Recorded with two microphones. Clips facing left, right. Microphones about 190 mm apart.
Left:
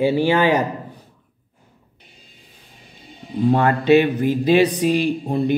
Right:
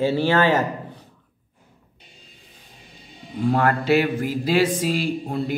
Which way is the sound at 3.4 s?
20° left (ahead or behind).